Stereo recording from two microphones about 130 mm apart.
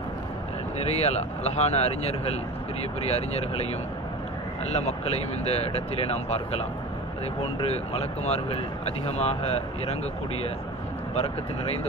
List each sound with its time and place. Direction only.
0.8 s speech: 55° left (ahead or behind)
4.6 s speech: 55° left (ahead or behind)
7.6 s speech: 55° left (ahead or behind)